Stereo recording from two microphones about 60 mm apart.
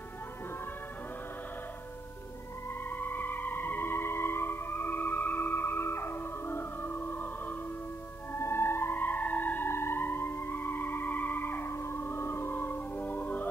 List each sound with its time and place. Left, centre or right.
2.9 s music: left
8.3 s music: left